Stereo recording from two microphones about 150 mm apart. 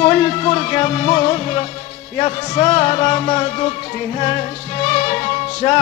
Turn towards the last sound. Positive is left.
turn(degrees=40)  # may be behind; listen again after turning